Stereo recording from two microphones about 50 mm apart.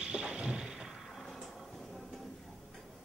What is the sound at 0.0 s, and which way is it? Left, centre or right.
Thump, centre.